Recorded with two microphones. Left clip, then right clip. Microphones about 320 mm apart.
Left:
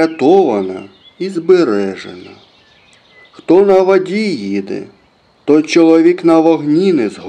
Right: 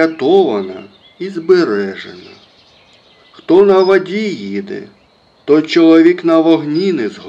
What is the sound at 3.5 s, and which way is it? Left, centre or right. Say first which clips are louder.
Speech: even; left.